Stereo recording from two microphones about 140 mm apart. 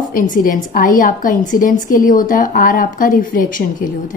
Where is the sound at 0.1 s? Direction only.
75° left (ahead or behind).